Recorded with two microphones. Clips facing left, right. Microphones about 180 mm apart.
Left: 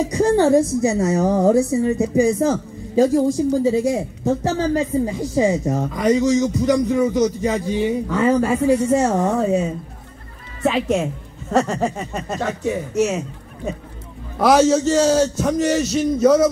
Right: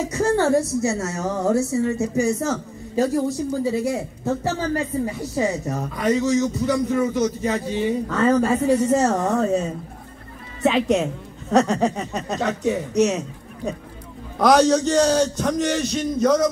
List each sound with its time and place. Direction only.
0.1 s a man's voice: 15° left (ahead or behind)
14.4 s a man's voice: 5° left (ahead or behind)